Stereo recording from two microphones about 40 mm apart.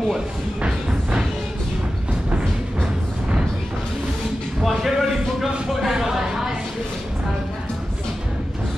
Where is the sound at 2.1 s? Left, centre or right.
Right.